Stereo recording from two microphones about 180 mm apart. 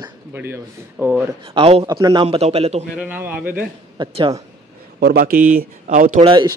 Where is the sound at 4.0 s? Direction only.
25° right (ahead or behind).